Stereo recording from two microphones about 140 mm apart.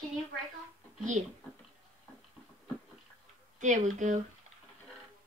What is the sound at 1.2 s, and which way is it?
Speech, 55° right (ahead or behind).